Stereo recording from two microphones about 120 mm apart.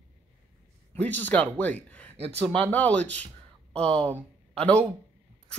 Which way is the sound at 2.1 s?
55° right (ahead or behind).